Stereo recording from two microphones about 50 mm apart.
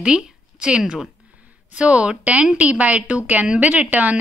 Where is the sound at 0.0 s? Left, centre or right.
Centre.